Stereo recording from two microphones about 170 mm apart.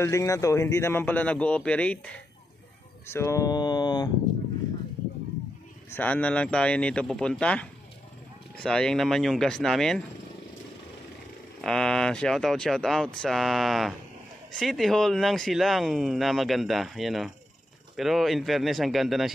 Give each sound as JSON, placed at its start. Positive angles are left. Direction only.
{"t": 0.0, "sound": "speech", "side_deg": 15}
{"t": 5.9, "sound": "speech", "side_deg": 10}
{"t": 11.6, "sound": "speech", "side_deg": 5}